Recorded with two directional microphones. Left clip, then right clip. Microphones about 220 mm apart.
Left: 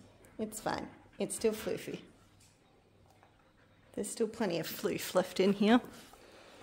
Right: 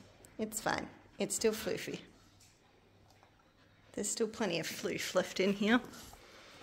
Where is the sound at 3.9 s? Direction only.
5° left (ahead or behind).